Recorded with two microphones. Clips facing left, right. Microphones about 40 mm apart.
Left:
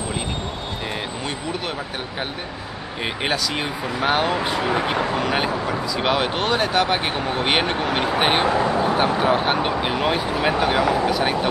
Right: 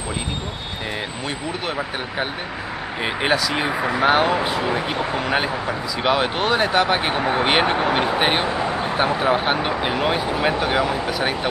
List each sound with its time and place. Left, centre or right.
3.0 s speech: centre